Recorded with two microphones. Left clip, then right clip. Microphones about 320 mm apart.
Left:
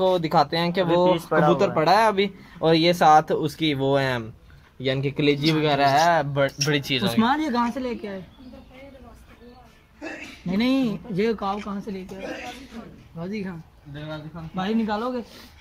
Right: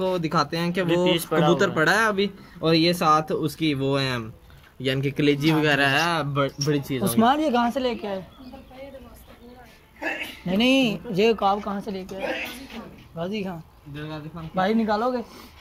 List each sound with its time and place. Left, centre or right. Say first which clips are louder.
0.1 s speech: left 4 dB; centre
1.1 s speech: left 1 dB; centre
1.5 s speech: left 1 dB; centre; by 7.2 s left
7.2 s speech: right 5 dB; centre
9.9 s a sound: right 7 dB; right
10.6 s speech: right 3 dB; centre
12.2 s speech: right 8 dB; right
14.5 s speech: right 4 dB; centre